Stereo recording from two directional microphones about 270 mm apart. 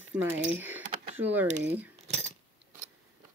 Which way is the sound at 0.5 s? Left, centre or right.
Centre.